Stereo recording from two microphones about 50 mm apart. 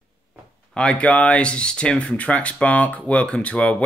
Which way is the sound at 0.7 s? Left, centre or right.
Left.